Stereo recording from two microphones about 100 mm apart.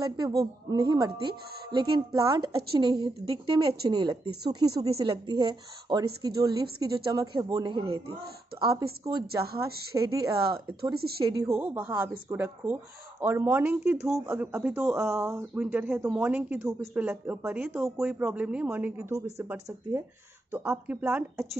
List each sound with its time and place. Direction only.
0.0 s a woman's voice: 45° right (ahead or behind)
4.9 s a woman's voice: 65° right (ahead or behind)
5.3 s a woman's voice: 45° right (ahead or behind)
8.7 s a woman's voice: 35° right (ahead or behind)
11.5 s speech: 15° right (ahead or behind)
14.4 s speech: 15° right (ahead or behind)
15.3 s speech: 15° right (ahead or behind)
16.5 s speech: 25° right (ahead or behind)
16.9 s a woman's voice: 15° right (ahead or behind)